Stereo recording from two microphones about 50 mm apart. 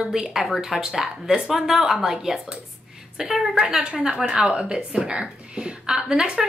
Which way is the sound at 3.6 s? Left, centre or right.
Centre.